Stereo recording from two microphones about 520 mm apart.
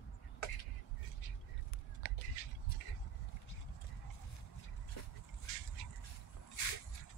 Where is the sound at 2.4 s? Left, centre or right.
Left.